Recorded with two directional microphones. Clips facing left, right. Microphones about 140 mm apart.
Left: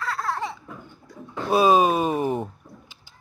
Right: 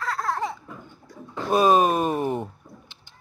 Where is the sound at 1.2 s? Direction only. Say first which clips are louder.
Left 1 dB; 5° left (ahead or behind).